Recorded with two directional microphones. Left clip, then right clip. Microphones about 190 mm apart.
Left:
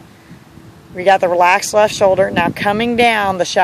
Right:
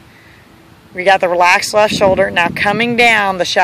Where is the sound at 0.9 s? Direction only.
Centre (ahead or behind).